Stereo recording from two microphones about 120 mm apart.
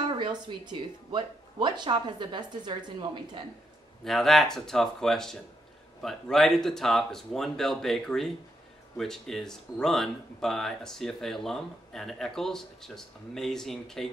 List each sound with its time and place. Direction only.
0.1 s speech: 40° right (ahead or behind)
4.0 s speech: centre (ahead or behind)